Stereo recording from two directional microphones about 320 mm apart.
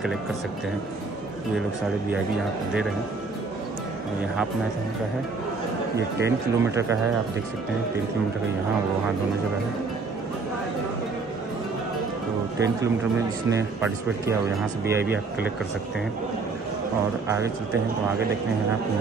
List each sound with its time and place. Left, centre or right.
6.2 s speech: centre
12.5 s speech: centre